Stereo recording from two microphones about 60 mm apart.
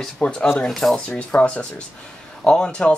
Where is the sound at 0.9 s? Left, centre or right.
Left.